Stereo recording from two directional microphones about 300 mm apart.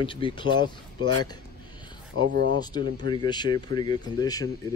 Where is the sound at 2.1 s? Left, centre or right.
Right.